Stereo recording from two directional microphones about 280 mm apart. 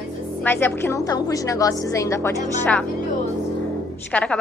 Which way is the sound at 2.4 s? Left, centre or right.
Left.